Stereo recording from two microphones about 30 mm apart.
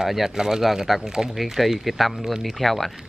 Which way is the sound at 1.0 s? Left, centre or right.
Right.